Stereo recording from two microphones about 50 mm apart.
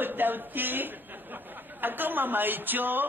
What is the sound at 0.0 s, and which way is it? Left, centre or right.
A man's voice, right.